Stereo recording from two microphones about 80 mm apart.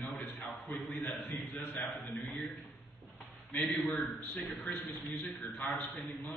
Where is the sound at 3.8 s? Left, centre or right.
Centre.